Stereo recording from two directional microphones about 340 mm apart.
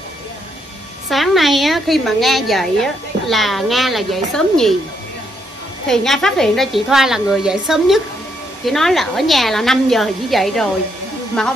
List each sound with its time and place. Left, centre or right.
1.1 s a woman's voice: centre
5.9 s a woman's voice: centre